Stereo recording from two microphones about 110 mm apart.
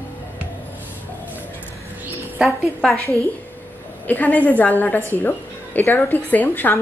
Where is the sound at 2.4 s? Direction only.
Centre (ahead or behind).